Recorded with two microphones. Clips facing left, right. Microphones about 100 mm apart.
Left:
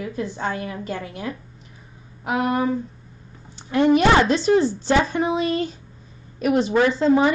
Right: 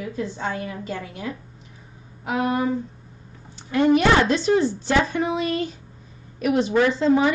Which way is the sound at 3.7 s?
30° left (ahead or behind).